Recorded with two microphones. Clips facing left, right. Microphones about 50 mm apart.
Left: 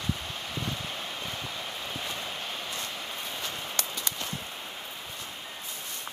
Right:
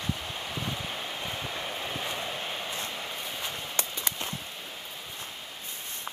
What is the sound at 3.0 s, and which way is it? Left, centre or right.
Train, centre.